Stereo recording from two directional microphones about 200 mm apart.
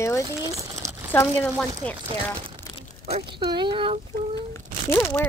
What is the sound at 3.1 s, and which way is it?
Speech, 30° right (ahead or behind).